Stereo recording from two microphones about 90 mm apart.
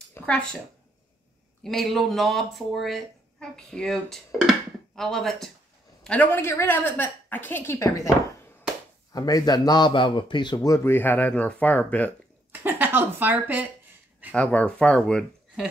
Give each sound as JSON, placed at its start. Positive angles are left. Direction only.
{"t": 0.2, "sound": "a woman's voice", "side_deg": 10}
{"t": 1.6, "sound": "speech", "side_deg": 0}
{"t": 6.0, "sound": "a woman's voice", "side_deg": 15}
{"t": 9.1, "sound": "a man's voice", "side_deg": 50}
{"t": 10.8, "sound": "a woman's voice", "side_deg": 25}
{"t": 12.5, "sound": "speech", "side_deg": -20}
{"t": 14.3, "sound": "speech", "side_deg": 15}